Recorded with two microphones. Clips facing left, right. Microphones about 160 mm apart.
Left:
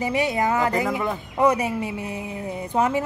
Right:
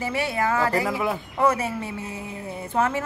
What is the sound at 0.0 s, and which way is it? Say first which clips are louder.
Speech: left 3 dB; 15° left (ahead or behind).